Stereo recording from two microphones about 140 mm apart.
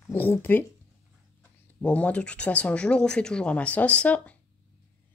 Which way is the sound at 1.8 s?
10° left (ahead or behind).